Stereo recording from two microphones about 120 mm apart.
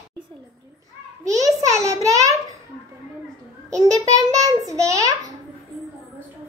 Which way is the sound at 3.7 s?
30° right (ahead or behind).